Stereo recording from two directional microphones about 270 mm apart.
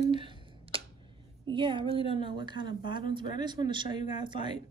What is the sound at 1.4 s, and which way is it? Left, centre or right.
Speech, centre.